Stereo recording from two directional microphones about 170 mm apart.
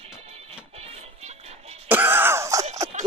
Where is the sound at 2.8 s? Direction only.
20° right (ahead or behind).